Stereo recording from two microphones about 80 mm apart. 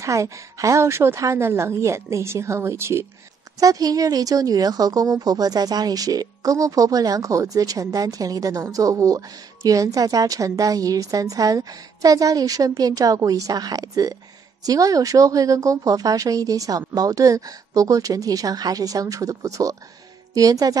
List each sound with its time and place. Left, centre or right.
0.0 s a woman's voice: right
3.5 s speech: right